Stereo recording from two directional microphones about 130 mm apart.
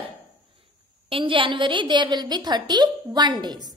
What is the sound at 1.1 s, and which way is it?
A woman's voice, 40° right (ahead or behind).